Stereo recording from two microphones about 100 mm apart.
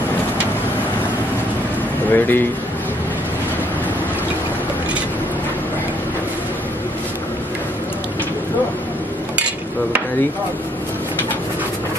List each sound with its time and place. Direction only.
2.0 s speech: 20° left (ahead or behind)